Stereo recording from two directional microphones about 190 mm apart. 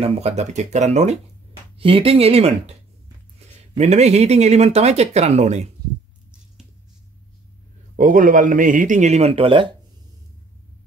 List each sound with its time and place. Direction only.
0.0 s speech: 35° right (ahead or behind)
7.9 s speech: 45° right (ahead or behind); by 9.7 s 30° right (ahead or behind)